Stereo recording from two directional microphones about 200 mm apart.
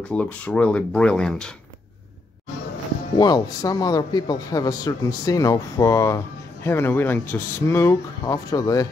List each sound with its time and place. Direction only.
0.1 s speech: 5° left (ahead or behind)
3.2 s speech: 20° left (ahead or behind)